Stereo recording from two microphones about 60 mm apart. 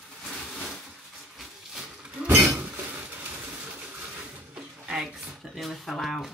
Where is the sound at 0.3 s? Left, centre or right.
Centre.